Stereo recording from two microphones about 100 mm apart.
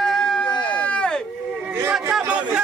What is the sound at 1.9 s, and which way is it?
Speech, 10° right (ahead or behind).